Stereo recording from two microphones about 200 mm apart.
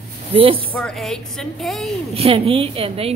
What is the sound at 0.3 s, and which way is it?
Speech, 25° right (ahead or behind).